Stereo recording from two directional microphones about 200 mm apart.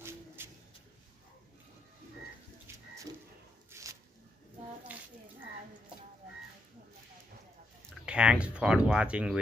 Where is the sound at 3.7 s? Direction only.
15° right (ahead or behind).